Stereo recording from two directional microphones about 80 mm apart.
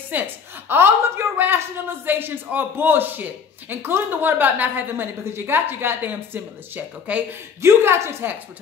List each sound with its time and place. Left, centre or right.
0.1 s speech: right
7.6 s a woman's voice: right